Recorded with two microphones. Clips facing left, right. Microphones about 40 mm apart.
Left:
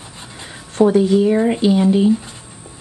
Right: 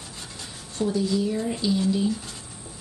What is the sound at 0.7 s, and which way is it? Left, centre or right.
Speech, left.